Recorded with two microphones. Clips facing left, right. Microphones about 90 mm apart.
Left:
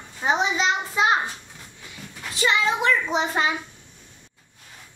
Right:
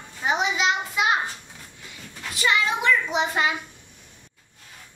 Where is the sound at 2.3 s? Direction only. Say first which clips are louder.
Left 1 dB; 25° left (ahead or behind).